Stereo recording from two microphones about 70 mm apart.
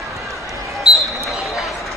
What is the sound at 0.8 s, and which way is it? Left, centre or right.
Basketball bounce, centre.